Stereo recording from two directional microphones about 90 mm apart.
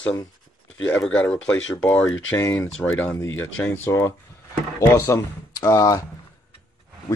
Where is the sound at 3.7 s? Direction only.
30° left (ahead or behind).